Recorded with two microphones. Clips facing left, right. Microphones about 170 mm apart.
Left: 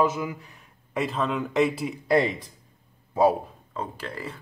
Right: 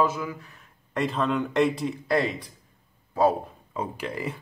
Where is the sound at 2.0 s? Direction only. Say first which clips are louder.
Left 3 dB; 20° left (ahead or behind).